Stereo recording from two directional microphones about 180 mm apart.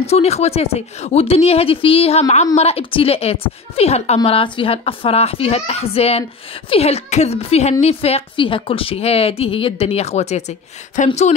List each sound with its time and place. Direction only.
0.0 s a woman's voice: 35° left (ahead or behind)